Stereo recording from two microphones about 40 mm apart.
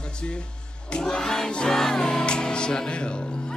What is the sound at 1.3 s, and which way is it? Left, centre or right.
Music, centre.